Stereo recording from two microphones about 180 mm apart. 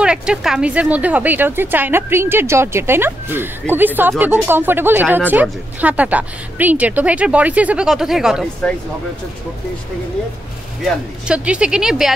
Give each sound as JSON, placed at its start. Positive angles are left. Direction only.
{"t": 0.0, "sound": "speech", "side_deg": -5}
{"t": 10.8, "sound": "speech", "side_deg": -5}